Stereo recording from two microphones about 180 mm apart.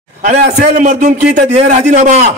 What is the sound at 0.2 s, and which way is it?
A man's voice, 40° right (ahead or behind).